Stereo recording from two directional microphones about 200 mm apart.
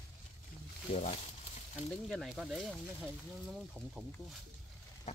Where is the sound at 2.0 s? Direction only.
Centre (ahead or behind).